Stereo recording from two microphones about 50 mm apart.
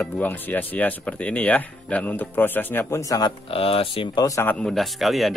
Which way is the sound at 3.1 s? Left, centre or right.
Left.